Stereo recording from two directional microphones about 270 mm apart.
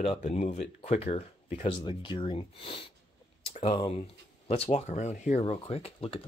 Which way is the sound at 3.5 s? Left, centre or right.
Left.